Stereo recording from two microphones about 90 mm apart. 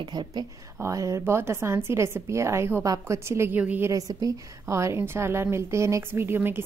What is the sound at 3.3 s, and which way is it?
Speech, 30° right (ahead or behind).